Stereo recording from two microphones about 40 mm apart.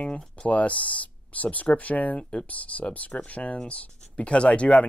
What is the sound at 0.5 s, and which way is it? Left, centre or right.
Speech, left.